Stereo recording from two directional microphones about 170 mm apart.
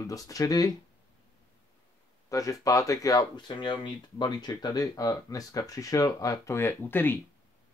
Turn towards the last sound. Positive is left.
turn(degrees=10)  # may be behind; listen again after turning